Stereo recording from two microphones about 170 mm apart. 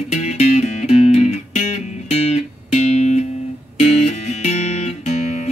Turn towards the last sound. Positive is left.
turn(degrees=45)  # may be behind; listen again after turning